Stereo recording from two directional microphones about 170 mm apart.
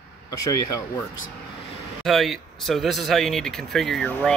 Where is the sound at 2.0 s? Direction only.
Centre (ahead or behind).